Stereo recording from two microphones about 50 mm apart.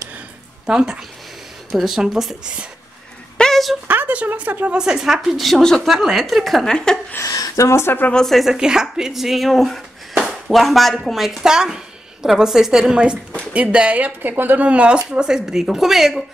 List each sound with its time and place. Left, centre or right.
0.7 s a woman's voice: centre
1.7 s speech: centre
2.4 s speech: right
3.4 s a sound: centre
3.8 s a sound: right
4.1 s speech: right
4.7 s a woman's voice: centre
6.7 s speech: centre
7.2 s a woman's voice: left
7.8 s speech: left
8.5 s a woman's voice: centre
12.9 s speech: right